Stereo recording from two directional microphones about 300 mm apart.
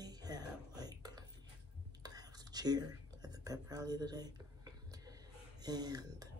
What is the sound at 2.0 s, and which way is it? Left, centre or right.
Whispering, centre.